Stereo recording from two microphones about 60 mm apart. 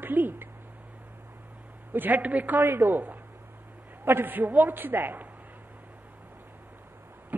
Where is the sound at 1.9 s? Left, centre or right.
Right.